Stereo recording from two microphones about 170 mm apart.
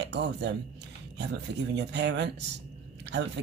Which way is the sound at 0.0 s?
90° right.